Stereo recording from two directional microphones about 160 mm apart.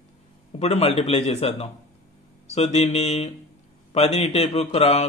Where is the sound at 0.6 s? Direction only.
40° left (ahead or behind).